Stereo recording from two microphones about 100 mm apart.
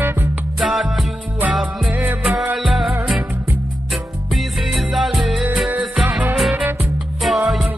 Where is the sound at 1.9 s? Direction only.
15° right (ahead or behind).